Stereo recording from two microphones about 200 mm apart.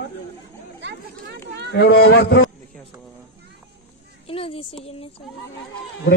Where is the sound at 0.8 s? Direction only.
60° right (ahead or behind).